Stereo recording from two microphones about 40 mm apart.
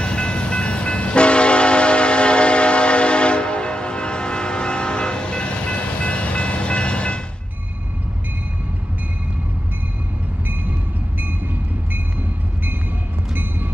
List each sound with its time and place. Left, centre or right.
0.0 s train: left
13.3 s train: right